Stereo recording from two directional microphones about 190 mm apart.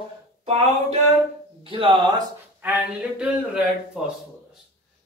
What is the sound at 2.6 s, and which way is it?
Speech, 5° right (ahead or behind).